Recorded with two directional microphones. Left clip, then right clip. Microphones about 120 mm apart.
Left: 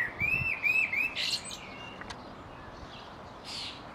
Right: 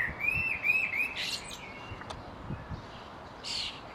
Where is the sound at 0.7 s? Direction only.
15° left (ahead or behind).